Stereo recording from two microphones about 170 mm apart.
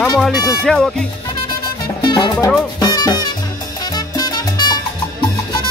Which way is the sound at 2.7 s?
25° left (ahead or behind).